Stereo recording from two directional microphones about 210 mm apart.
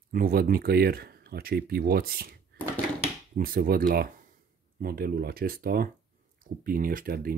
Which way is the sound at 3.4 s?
45° right (ahead or behind).